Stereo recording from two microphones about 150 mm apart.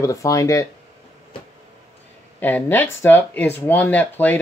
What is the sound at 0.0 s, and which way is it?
Speech, 20° left (ahead or behind).